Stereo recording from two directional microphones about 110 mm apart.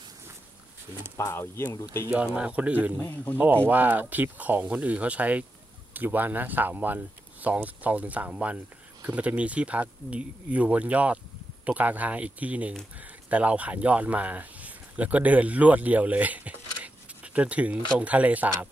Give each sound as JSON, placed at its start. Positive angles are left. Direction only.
{"t": 1.1, "sound": "speech", "side_deg": 25}
{"t": 2.2, "sound": "speech", "side_deg": -10}
{"t": 3.0, "sound": "speech", "side_deg": 20}
{"t": 3.6, "sound": "speech", "side_deg": -15}